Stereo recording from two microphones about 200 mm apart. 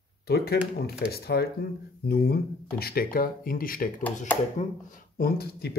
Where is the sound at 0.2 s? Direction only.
50° left (ahead or behind).